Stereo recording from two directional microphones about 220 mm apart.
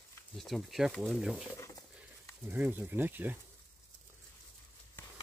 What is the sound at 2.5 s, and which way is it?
Speech, 10° right (ahead or behind).